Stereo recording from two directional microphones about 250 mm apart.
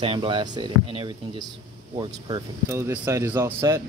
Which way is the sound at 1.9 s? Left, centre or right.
Centre.